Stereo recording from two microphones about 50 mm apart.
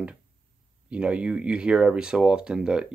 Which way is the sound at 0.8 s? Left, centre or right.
Right.